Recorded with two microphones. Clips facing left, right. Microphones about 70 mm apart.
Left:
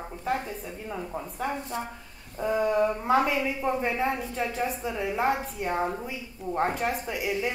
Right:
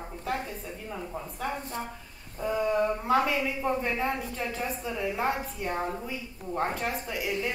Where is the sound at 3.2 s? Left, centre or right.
Centre.